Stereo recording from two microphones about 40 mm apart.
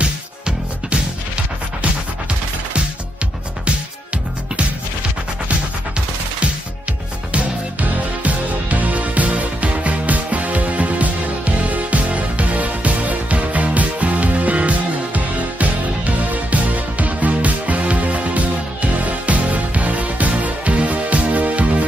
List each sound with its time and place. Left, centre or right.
0.0 s music: right
3.6 s music: right
7.3 s music: right